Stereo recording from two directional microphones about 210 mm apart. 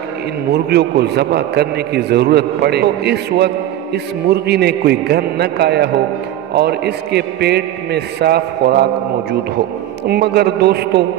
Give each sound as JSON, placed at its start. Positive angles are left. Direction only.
{"t": 0.5, "sound": "a man's voice", "side_deg": -50}
{"t": 10.0, "sound": "a man's voice", "side_deg": -50}